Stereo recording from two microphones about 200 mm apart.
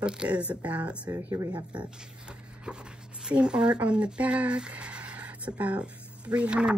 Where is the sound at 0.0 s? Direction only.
5° right (ahead or behind); by 1.9 s 20° right (ahead or behind).